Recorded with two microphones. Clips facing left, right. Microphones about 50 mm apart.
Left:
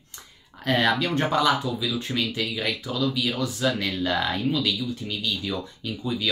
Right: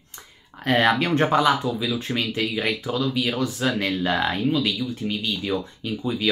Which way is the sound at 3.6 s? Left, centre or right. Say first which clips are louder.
Even; centre.